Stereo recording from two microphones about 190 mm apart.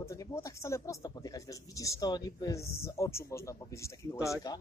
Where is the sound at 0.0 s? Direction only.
15° left (ahead or behind).